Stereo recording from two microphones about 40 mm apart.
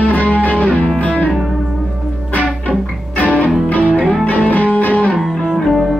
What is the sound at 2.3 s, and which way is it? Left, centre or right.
Music, left.